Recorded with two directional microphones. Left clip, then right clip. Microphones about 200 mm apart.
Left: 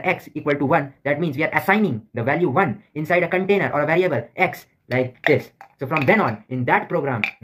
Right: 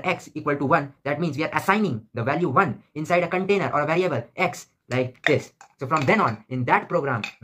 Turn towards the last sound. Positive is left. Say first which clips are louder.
# left 1 dB
turn(degrees=0)  # may be behind; listen again after turning